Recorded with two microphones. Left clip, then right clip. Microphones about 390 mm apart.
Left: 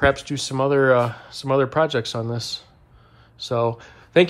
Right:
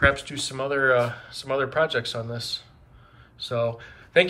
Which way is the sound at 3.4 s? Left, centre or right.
Centre.